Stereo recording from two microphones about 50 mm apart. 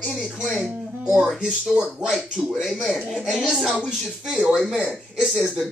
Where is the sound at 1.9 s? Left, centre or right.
Centre.